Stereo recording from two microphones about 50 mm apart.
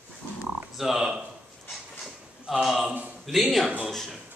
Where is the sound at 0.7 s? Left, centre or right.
Centre.